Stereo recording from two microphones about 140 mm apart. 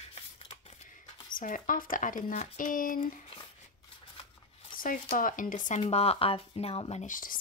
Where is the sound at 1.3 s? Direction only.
75° left (ahead or behind).